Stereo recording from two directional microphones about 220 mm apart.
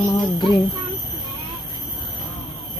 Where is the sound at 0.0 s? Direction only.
15° left (ahead or behind).